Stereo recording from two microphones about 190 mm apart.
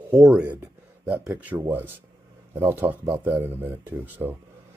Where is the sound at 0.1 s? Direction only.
5° right (ahead or behind).